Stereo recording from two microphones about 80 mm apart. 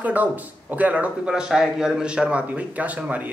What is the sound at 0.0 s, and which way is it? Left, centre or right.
Speech, centre.